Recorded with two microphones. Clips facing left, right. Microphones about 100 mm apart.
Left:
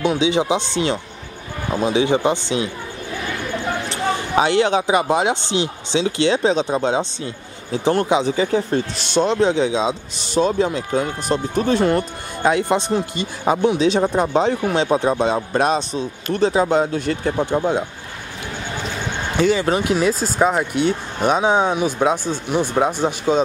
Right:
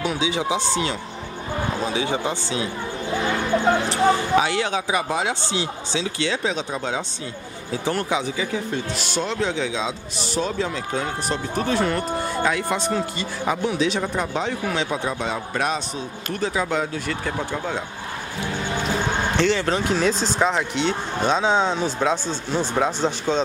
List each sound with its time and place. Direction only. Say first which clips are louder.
0.0 s speech: left 6 dB; 20° left (ahead or behind)
3.9 s speech: right 2 dB; 25° left (ahead or behind)
8.5 s a man's voice: left 7 dB; 40° left (ahead or behind)
9.1 s a man's voice: left 9 dB; 20° left (ahead or behind)
19.3 s speech: left 6 dB; 10° left (ahead or behind)